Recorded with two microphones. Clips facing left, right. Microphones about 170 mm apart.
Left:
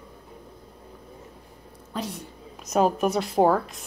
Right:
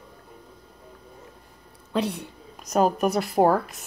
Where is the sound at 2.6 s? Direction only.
Centre (ahead or behind).